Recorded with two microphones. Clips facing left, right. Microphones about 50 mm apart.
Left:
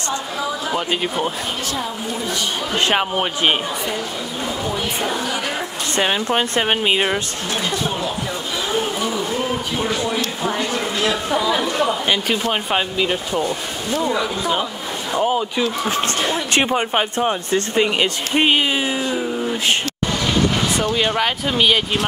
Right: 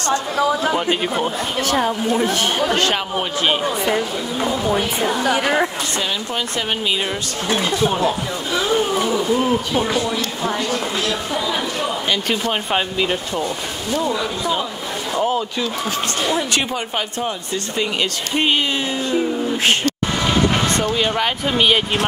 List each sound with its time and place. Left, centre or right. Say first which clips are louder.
0.7 s speech: right 2 dB; centre
1.7 s a woman's voice: right 7 dB; right
2.8 s speech: left 1 dB; left
3.8 s speech: right 4 dB; right
5.9 s speech: left 7 dB; left
7.4 s speech: right 7 dB; centre
9.0 s speech: right 3 dB; centre
10.6 s speech: left 1 dB; centre
12.7 s speech: right 1 dB; centre
16.5 s speech: left 4 dB; left
20.9 s speech: even; centre
21.5 s speech: right 1 dB; centre